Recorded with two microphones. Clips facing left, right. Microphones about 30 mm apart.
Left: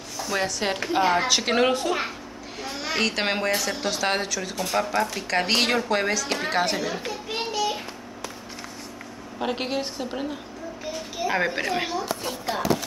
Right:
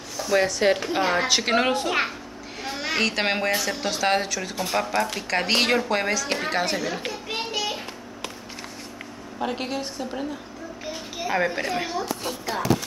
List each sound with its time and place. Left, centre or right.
0.2 s a woman's voice: centre
2.6 s a woman's voice: centre
3.0 s a woman's voice: centre
6.5 s a woman's voice: centre
7.2 s a sound: centre
9.4 s a woman's voice: centre
11.2 s a woman's voice: centre